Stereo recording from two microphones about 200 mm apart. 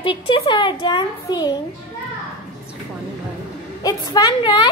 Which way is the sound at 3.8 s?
20° left (ahead or behind).